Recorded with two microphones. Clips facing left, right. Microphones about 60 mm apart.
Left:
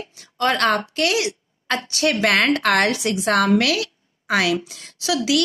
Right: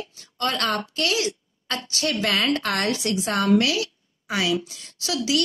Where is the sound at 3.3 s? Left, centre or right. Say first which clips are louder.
Left 4 dB; left.